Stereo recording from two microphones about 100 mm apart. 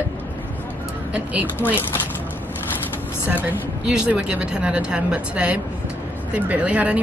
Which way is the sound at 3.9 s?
10° right (ahead or behind).